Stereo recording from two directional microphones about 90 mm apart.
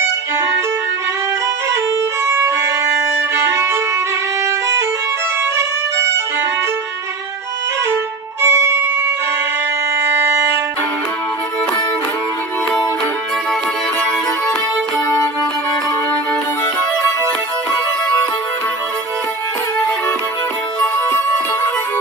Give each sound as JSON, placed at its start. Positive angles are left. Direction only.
{"t": 2.2, "sound": "music", "side_deg": -30}
{"t": 7.9, "sound": "violin", "side_deg": -25}
{"t": 10.1, "sound": "music", "side_deg": -25}